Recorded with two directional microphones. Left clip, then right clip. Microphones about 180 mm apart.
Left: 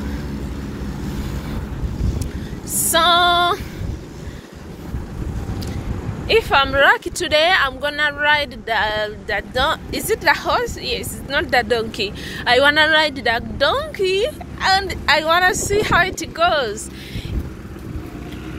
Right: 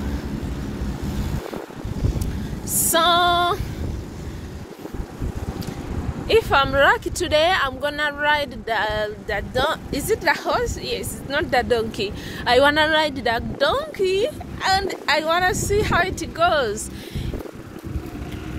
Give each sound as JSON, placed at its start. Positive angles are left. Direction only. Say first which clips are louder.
{"t": 2.7, "sound": "female singing", "louder": "left 3 dB", "side_deg": -20}
{"t": 6.2, "sound": "speech", "louder": "left 2 dB", "side_deg": -20}
{"t": 13.9, "sound": "a woman's voice", "louder": "left 2 dB", "side_deg": -5}